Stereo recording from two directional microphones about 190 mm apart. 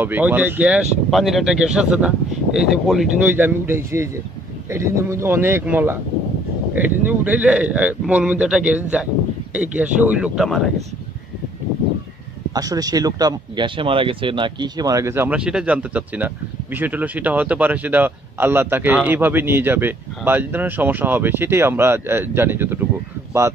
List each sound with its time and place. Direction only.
0.0 s speech: 10° right (ahead or behind)
12.5 s speech: 20° right (ahead or behind)